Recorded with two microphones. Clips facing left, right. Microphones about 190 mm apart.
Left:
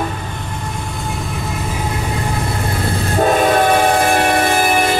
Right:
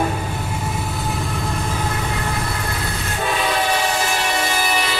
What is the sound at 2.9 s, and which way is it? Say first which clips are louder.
Train: left 11 dB; 40° left (ahead or behind).